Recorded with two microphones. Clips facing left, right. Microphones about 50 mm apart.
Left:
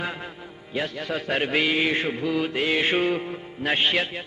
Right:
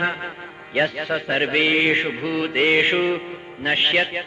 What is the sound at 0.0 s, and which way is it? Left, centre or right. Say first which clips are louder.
Speech: right 7 dB; right.